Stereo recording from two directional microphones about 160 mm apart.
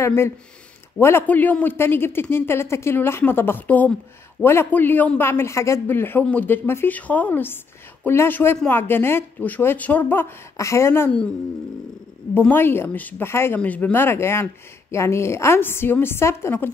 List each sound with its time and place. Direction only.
0.0 s a woman's voice: 15° left (ahead or behind)
12.4 s a woman's voice: 15° left (ahead or behind)